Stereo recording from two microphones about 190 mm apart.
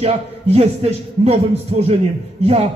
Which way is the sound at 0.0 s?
35° right (ahead or behind).